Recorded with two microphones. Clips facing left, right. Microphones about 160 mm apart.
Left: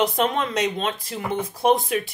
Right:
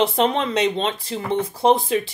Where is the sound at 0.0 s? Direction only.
25° right (ahead or behind).